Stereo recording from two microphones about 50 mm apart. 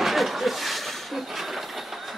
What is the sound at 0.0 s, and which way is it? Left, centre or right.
Train, centre.